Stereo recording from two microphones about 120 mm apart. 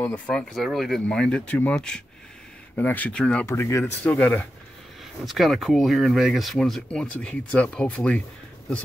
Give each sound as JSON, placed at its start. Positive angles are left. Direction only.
{"t": 0.0, "sound": "speech", "side_deg": 10}
{"t": 3.4, "sound": "speech", "side_deg": 25}
{"t": 4.0, "sound": "speech", "side_deg": 10}
{"t": 5.2, "sound": "speech", "side_deg": 0}